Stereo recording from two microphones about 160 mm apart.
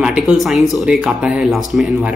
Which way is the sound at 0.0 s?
5° right (ahead or behind).